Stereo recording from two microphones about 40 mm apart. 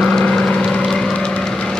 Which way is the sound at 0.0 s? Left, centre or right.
Centre.